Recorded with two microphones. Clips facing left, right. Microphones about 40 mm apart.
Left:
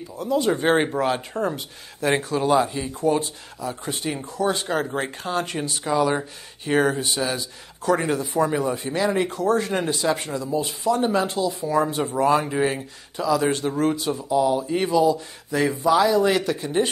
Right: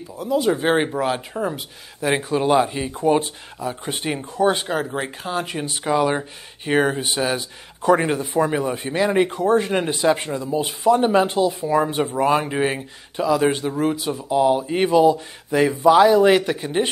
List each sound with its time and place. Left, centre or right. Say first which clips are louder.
0.2 s a man's voice: right 2 dB; centre; by 4.6 s right
4.6 s speech: even; centre
5.9 s a man's voice: right 2 dB; right
13.6 s speech: right 1 dB; centre
14.3 s a man's voice: right 3 dB; right